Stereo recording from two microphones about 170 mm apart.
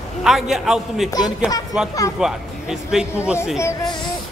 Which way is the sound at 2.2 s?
5° right (ahead or behind).